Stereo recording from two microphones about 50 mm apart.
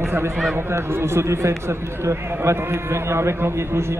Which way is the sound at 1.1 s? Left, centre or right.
Right.